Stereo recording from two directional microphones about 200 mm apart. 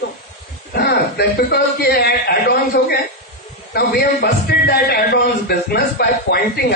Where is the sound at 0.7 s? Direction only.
55° left (ahead or behind).